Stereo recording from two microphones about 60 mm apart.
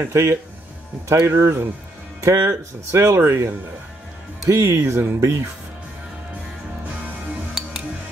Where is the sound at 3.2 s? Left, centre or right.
Right.